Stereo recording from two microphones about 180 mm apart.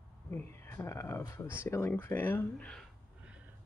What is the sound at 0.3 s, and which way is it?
Speech, 15° left (ahead or behind).